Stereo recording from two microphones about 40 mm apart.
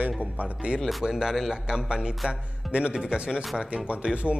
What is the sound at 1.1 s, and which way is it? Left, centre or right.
Speech, centre.